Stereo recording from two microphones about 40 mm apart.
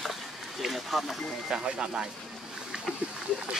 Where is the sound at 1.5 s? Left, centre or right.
Centre.